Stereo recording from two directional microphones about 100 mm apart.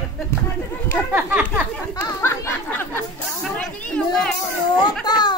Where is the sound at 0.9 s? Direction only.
15° right (ahead or behind).